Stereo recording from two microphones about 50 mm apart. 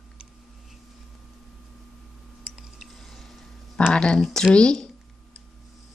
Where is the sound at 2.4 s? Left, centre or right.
Centre.